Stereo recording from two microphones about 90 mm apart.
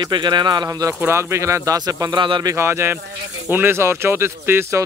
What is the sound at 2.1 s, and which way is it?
Speech, 65° right (ahead or behind).